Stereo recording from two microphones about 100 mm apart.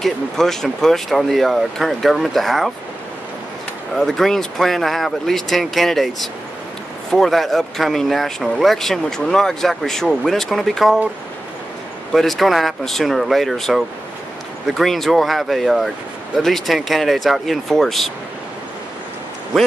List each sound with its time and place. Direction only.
0.0 s speech: 5° left (ahead or behind)
3.9 s speech: 5° left (ahead or behind)
12.1 s speech: centre (ahead or behind)